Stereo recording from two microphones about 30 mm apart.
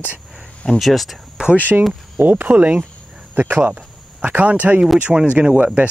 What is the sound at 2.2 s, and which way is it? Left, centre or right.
Speech, right.